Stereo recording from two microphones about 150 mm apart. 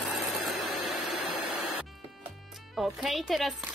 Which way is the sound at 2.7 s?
Centre (ahead or behind).